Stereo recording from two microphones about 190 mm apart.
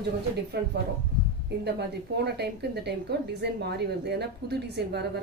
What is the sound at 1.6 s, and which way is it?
A woman's voice, 60° right (ahead or behind).